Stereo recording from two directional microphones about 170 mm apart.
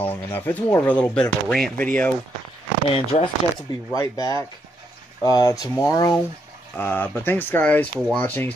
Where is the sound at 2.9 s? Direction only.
35° left (ahead or behind).